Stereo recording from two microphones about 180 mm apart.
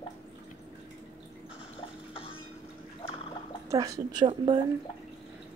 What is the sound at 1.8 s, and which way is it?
Music, 30° left (ahead or behind).